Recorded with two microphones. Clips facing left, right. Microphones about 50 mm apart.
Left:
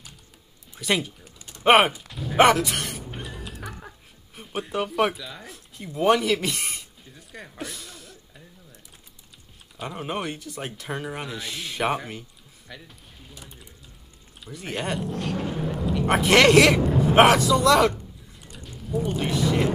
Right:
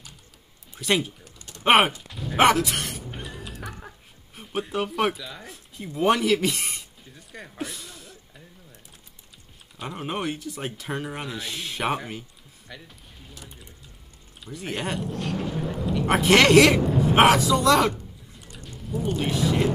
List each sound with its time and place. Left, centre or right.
0.7 s speech: centre
1.2 s typing: centre
1.6 s speech: centre
1.9 s a sound: centre
4.4 s speech: centre
9.8 s speech: centre